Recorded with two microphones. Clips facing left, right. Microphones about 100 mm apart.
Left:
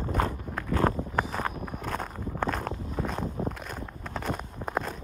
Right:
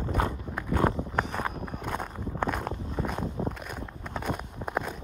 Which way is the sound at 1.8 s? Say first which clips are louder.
Even; 15° right (ahead or behind).